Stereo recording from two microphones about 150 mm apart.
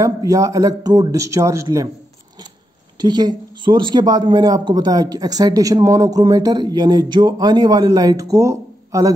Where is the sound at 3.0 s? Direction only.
25° right (ahead or behind).